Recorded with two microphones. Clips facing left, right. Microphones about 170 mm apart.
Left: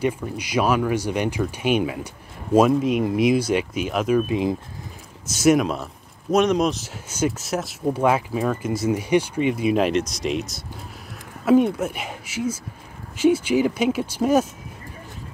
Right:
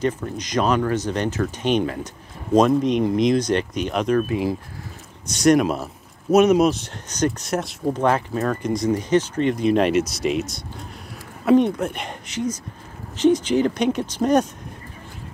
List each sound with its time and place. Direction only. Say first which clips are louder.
0.0 s speech: even; 10° left (ahead or behind)
4.3 s speech: left 1 dB; 20° left (ahead or behind)
5.2 s speech: right 1 dB; 5° left (ahead or behind)